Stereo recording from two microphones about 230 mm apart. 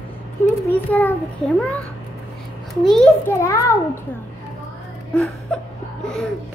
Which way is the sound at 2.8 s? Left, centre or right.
Centre.